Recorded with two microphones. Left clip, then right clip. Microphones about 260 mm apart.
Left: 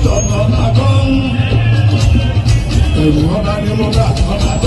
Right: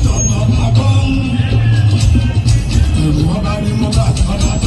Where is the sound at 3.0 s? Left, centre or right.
Centre.